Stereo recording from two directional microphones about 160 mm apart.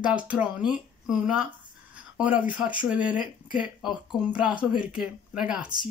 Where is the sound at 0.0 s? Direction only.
10° right (ahead or behind).